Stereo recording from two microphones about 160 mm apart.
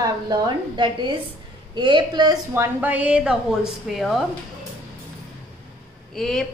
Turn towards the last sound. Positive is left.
turn(degrees=0)  # may be behind; listen again after turning